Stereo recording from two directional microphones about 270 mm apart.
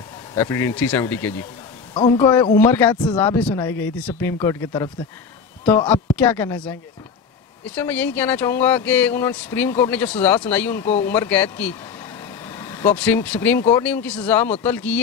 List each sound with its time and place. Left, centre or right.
0.3 s speech: centre